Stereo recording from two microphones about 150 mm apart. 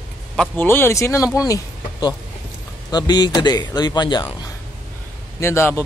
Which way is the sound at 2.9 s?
30° left (ahead or behind).